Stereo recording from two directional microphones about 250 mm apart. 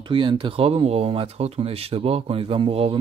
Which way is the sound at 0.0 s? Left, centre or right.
Centre.